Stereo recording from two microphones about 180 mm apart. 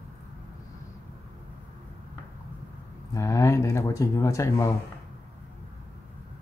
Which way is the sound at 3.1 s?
15° left (ahead or behind).